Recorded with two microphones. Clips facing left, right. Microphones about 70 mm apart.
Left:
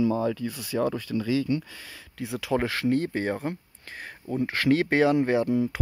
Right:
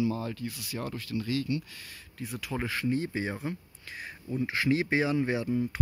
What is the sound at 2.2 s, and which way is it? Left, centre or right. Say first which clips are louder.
Speech: left 8 dB; left.